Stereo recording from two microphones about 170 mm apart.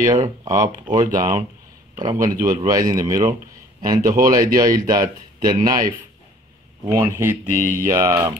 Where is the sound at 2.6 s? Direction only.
20° right (ahead or behind).